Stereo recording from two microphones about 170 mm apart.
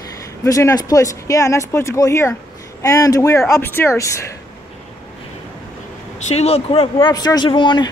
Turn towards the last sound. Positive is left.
turn(degrees=30)  # may be behind; listen again after turning